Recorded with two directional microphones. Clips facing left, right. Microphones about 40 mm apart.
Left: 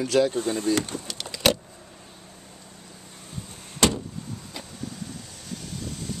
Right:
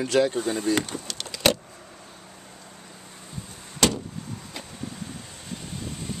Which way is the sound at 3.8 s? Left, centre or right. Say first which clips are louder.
Left 1 dB; centre.